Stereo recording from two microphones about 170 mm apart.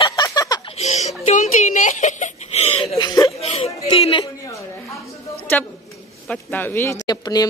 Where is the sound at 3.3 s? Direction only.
40° left (ahead or behind).